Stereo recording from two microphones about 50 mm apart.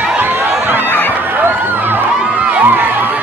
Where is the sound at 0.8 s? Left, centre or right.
Left.